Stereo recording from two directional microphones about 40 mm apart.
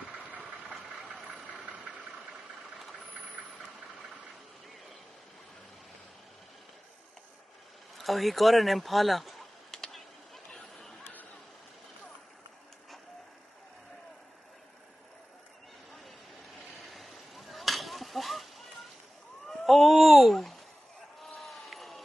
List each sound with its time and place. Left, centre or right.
0.5 s engine: centre
1.1 s vehicle: centre
1.5 s engine: right
8.0 s speech: centre
9.7 s a sound: centre
16.8 s a sound: centre